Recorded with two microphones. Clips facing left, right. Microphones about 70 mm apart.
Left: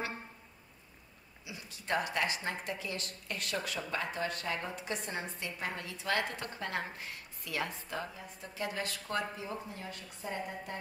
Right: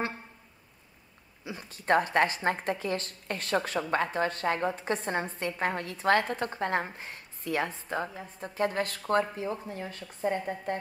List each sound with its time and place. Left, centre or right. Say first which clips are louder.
1.4 s a woman's voice: right 7 dB; right
5.6 s speech: right 9 dB; right
8.1 s speech: right 6 dB; right